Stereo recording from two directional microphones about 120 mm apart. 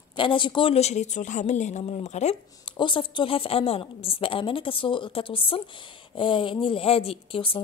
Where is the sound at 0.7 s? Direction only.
70° left (ahead or behind).